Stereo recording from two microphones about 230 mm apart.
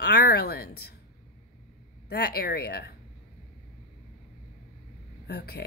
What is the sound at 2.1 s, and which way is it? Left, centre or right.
Speech, left.